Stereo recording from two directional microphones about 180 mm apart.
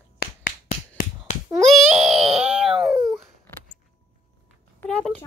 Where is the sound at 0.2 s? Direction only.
55° left (ahead or behind).